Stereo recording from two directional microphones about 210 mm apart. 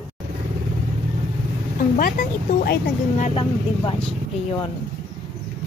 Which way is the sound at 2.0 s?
45° left (ahead or behind).